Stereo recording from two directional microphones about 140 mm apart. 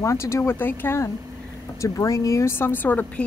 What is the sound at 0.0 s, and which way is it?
A woman's voice, 20° left (ahead or behind).